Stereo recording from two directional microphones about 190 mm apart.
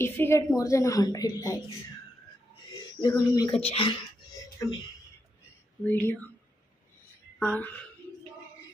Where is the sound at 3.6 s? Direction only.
30° left (ahead or behind).